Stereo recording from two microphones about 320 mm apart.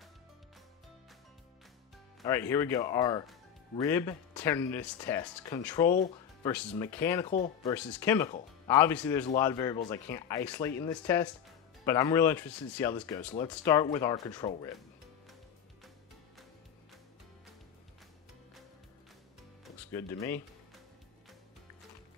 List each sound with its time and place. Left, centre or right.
2.2 s speech: centre
5.9 s speech: left
6.4 s speech: centre
7.3 s speech: left
7.7 s speech: centre
19.6 s music: centre